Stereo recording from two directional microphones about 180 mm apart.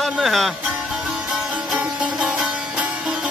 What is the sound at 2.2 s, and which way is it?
Music, 5° right (ahead or behind).